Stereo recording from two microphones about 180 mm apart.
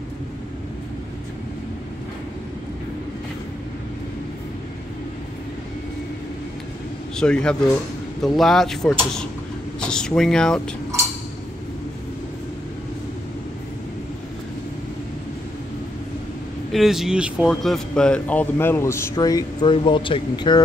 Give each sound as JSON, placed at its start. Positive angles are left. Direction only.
{"t": 7.2, "sound": "speech", "side_deg": 5}
{"t": 16.7, "sound": "speech", "side_deg": 0}